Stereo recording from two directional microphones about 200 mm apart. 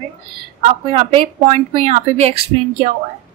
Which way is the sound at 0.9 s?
25° right (ahead or behind).